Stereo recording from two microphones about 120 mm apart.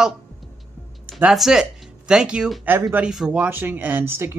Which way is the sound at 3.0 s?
5° right (ahead or behind).